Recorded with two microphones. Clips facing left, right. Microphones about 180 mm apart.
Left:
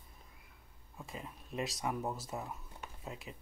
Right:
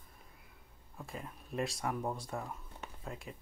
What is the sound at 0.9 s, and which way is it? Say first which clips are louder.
Speech: right 1 dB; centre (ahead or behind).